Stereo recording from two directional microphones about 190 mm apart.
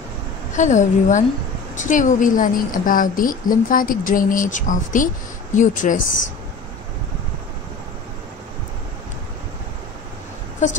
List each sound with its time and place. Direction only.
0.6 s a woman's voice: 40° left (ahead or behind)
10.6 s a woman's voice: 40° left (ahead or behind)